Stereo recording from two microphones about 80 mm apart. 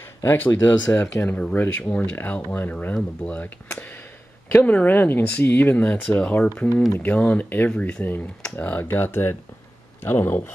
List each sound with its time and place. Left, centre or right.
0.2 s speech: left
4.6 s speech: left
6.5 s speech: left